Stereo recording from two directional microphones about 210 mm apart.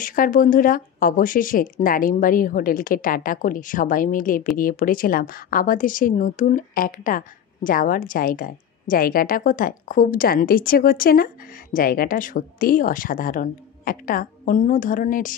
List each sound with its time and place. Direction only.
0.0 s speech: 40° left (ahead or behind)